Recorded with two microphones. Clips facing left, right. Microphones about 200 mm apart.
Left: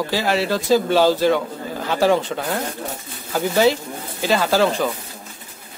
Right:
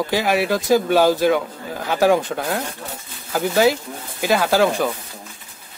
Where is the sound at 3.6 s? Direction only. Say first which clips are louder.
Even; 10° right (ahead or behind).